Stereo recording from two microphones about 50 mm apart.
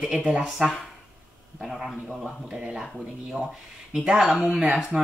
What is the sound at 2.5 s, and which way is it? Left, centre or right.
Speech, centre.